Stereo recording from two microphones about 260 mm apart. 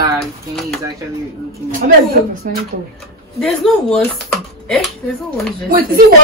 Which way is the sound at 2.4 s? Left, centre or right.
Right.